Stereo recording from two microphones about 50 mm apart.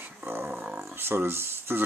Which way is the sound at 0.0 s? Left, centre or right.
Right.